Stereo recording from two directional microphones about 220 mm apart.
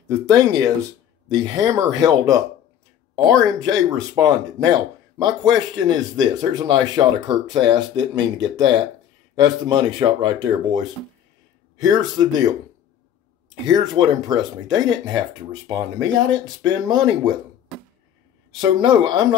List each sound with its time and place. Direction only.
0.1 s speech: 15° right (ahead or behind)
3.5 s speech: 15° right (ahead or behind)
13.7 s speech: 20° right (ahead or behind)
18.5 s speech: 20° right (ahead or behind)